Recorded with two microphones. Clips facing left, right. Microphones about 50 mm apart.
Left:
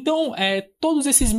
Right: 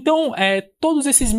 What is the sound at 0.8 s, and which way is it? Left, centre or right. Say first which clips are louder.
Speech: right 1 dB; centre.